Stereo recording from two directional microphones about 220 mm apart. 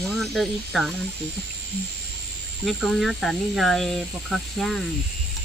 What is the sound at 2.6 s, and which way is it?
Speech, centre (ahead or behind).